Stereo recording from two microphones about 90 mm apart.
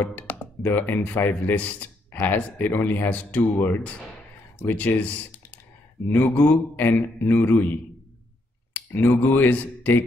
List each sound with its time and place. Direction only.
0.0 s speech: 20° left (ahead or behind)